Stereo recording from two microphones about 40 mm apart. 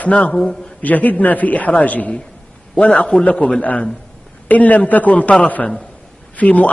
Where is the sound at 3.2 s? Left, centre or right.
Left.